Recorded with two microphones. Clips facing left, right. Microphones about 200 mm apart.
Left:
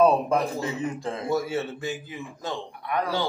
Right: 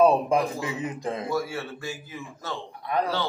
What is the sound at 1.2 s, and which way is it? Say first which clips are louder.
Speech: left 6 dB; 20° left (ahead or behind).